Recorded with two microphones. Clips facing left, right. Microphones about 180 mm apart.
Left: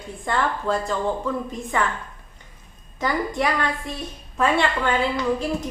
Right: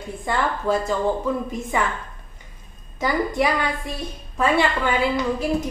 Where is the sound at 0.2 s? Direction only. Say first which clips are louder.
Even; 10° right (ahead or behind).